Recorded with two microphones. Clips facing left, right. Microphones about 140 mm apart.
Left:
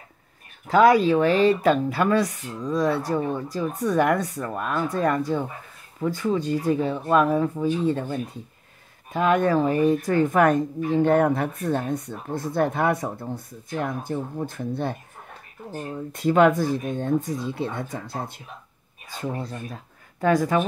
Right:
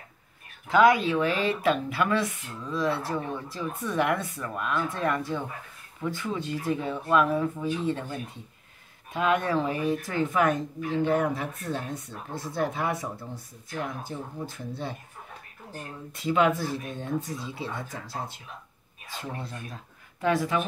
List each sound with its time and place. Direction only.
0.7 s speech: 40° left (ahead or behind)
16.1 s speech: 50° left (ahead or behind)
20.2 s speech: 45° left (ahead or behind)